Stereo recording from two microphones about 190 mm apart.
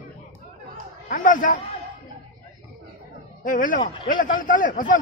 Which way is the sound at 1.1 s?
45° left (ahead or behind).